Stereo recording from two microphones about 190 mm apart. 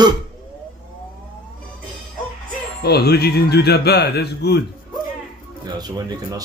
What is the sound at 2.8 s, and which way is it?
Speech, 55° left (ahead or behind).